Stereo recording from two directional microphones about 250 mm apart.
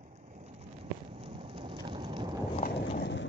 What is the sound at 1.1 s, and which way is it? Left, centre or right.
Rain, right.